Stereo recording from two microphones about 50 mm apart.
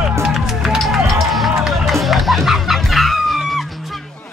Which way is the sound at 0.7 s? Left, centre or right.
Centre.